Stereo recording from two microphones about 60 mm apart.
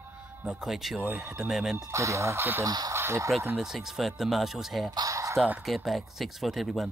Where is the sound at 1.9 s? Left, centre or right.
Right.